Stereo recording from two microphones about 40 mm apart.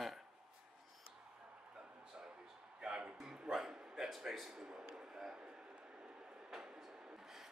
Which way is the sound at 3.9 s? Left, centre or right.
Centre.